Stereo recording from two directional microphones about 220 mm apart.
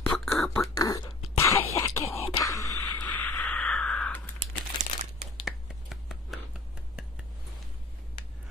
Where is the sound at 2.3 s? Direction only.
15° left (ahead or behind).